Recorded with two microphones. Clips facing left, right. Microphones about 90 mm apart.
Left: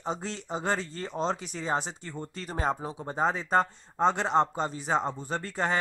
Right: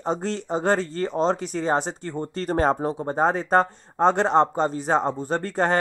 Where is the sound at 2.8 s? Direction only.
50° right (ahead or behind).